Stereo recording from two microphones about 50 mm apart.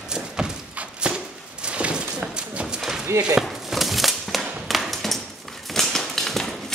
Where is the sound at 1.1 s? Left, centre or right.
Right.